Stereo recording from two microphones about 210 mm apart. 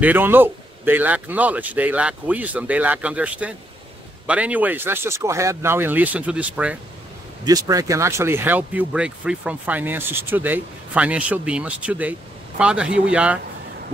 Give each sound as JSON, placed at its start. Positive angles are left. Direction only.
{"t": 0.0, "sound": "speech", "side_deg": -10}
{"t": 7.4, "sound": "speech", "side_deg": -15}